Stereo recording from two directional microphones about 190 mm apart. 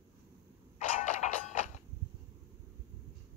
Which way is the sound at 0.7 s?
40° left (ahead or behind).